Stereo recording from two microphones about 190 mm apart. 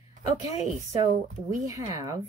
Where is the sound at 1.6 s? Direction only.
15° right (ahead or behind).